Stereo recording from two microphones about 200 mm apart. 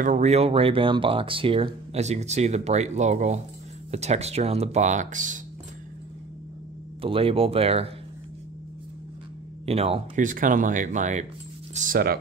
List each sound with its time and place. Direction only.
0.0 s speech: 35° right (ahead or behind)
7.0 s speech: 25° right (ahead or behind)
9.7 s speech: 30° right (ahead or behind)
10.2 s speech: 40° right (ahead or behind)